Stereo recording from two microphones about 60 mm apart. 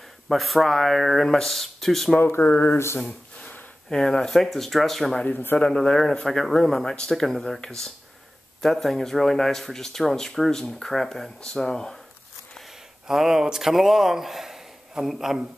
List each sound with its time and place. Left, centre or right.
0.3 s speech: centre
2.1 s speech: left
2.7 s speech: left
3.0 s speech: centre
13.1 s a man's voice: centre